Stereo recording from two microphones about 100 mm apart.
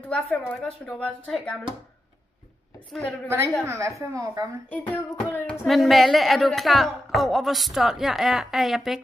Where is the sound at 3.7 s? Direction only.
30° right (ahead or behind).